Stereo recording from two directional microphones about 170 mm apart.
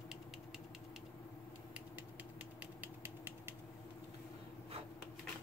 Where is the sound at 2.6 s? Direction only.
10° right (ahead or behind).